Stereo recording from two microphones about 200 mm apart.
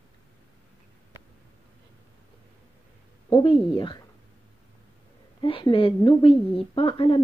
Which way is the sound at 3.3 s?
25° left (ahead or behind).